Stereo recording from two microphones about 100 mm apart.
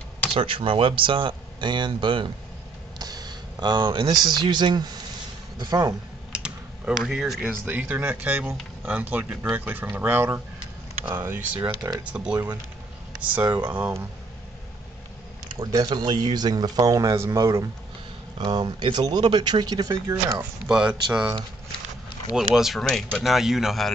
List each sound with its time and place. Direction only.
0.3 s speech: 60° right (ahead or behind)
3.0 s speech: 40° right (ahead or behind)
6.3 s typing: 5° right (ahead or behind)
7.4 s speech: 15° right (ahead or behind)
15.6 s speech: 40° right (ahead or behind)
18.4 s speech: 45° right (ahead or behind)
19.9 s speech: 30° right (ahead or behind)
20.6 s speech: 10° right (ahead or behind)
22.3 s speech: 5° right (ahead or behind)